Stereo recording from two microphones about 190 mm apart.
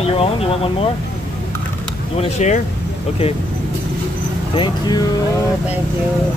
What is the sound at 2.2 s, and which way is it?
Speech, 35° left (ahead or behind).